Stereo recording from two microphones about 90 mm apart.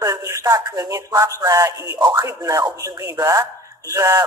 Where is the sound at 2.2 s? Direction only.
35° right (ahead or behind).